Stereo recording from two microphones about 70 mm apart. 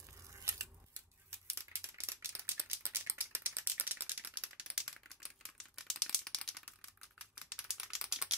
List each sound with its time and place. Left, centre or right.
0.3 s scissors: right
1.3 s a sound: right; by 4.9 s centre
5.8 s rattle: centre
7.3 s computer keyboard: centre